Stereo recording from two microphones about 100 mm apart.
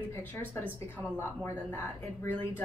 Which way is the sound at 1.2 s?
25° left (ahead or behind).